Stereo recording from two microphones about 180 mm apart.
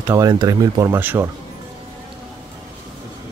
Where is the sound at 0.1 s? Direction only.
20° right (ahead or behind).